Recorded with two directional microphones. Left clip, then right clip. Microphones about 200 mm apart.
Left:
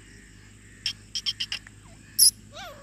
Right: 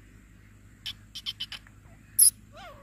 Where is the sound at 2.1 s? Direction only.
Centre (ahead or behind).